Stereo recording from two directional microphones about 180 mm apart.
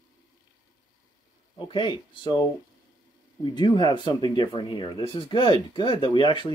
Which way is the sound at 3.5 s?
25° left (ahead or behind).